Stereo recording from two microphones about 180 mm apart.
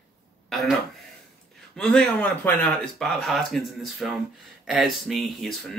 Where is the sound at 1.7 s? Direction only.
5° left (ahead or behind).